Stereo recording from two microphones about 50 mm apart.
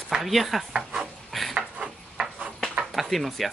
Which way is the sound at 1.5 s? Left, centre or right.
Centre.